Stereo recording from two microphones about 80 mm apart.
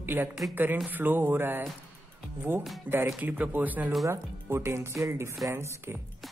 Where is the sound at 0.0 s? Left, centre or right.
Right.